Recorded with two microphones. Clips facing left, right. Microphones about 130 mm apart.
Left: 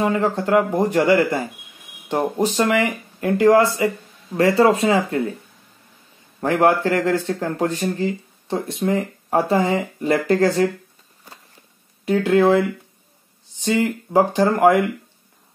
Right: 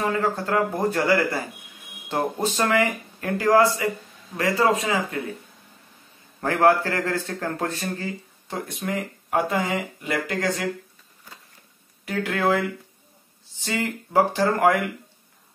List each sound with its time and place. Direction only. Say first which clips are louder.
0.0 s a man's voice: left 4 dB; 20° left (ahead or behind)
6.4 s a man's voice: left 2 dB; 20° left (ahead or behind); by 10.5 s 35° left (ahead or behind)
12.0 s a man's voice: left 9 dB; 25° left (ahead or behind)